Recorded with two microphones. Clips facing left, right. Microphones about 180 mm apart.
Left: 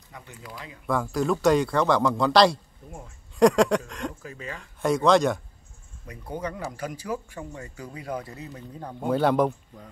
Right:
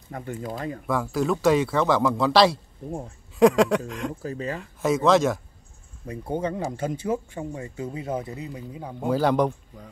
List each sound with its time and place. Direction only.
0.1 s speech: 50° right (ahead or behind)
0.8 s a man's voice: centre (ahead or behind)
4.1 s speech: 35° right (ahead or behind)
4.6 s a man's voice: centre (ahead or behind)
6.0 s speech: 25° right (ahead or behind); by 9.8 s centre (ahead or behind)